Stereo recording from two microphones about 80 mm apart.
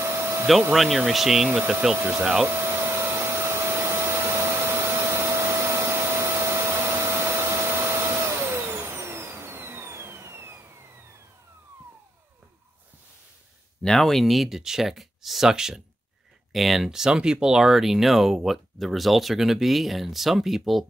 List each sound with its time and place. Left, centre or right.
0.0 s vacuum cleaner: right
0.7 s speech: centre
2.0 s speech: right
2.4 s vacuum cleaner: right
13.8 s speech: centre